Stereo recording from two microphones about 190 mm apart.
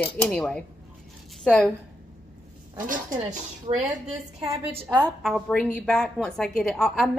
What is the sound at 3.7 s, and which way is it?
A woman's voice, 30° right (ahead or behind).